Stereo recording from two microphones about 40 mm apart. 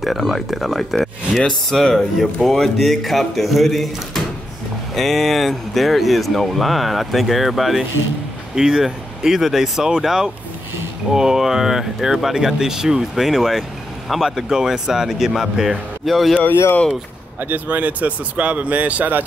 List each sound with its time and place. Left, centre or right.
0.0 s speech: centre
0.9 s a sound: centre
1.7 s speech: centre
8.5 s speech: centre
13.1 s speech: centre
16.1 s speech: centre
17.4 s speech: right